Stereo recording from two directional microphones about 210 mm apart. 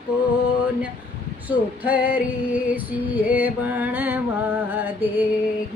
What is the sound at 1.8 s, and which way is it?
Female singing, 5° right (ahead or behind).